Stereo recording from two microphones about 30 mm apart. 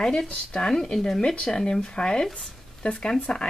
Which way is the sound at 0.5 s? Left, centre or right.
Left.